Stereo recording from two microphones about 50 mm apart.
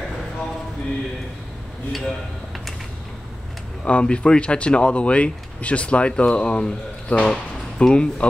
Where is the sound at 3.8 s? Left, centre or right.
Left.